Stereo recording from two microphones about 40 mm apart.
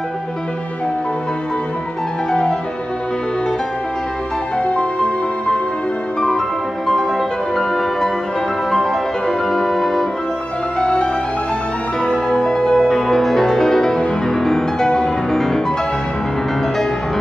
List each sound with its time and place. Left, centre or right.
4.6 s music: left
6.9 s music: centre
9.5 s organ: centre
10.8 s music: left
12.1 s music: centre